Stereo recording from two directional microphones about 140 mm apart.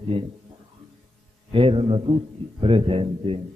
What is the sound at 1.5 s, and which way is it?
A man's voice, 40° right (ahead or behind).